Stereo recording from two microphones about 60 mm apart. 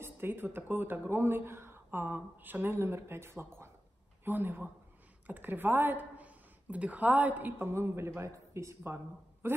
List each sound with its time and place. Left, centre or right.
0.0 s speech: right
2.7 s a man's voice: right
7.5 s a man's voice: right